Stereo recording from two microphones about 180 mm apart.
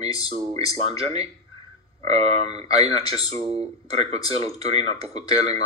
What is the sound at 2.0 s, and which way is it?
Speech, 35° right (ahead or behind).